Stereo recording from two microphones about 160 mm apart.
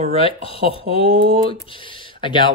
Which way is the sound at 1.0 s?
50° right (ahead or behind).